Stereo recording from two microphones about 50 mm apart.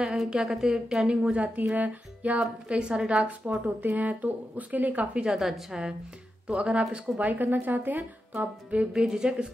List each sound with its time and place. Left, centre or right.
0.0 s a woman's voice: centre
3.6 s speech: right
5.4 s a woman's voice: centre
6.4 s speech: centre
7.2 s speech: right
8.9 s a woman's voice: centre